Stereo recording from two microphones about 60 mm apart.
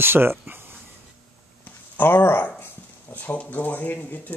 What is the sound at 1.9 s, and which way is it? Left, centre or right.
Speech, left.